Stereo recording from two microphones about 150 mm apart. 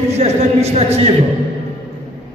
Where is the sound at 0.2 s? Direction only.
45° right (ahead or behind).